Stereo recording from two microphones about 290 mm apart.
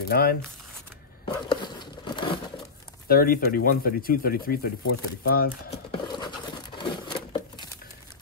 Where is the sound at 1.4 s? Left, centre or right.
Centre.